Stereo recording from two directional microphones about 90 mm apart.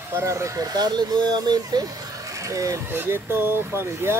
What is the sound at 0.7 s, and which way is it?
Speech, 50° right (ahead or behind).